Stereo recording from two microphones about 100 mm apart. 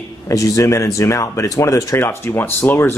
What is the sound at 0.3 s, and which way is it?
Speech, 35° left (ahead or behind).